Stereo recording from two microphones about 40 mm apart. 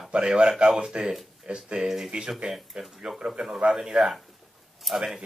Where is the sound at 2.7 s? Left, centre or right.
Centre.